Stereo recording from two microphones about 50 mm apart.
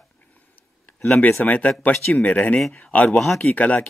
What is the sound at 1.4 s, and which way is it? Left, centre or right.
Speech, left.